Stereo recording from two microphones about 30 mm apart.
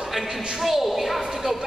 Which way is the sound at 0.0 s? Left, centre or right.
Centre.